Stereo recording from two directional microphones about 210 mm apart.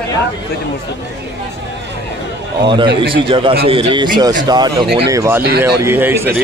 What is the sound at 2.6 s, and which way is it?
A man's voice, 25° right (ahead or behind).